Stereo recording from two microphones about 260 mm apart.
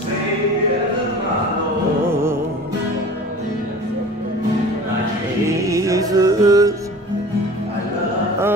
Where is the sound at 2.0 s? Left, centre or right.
Centre.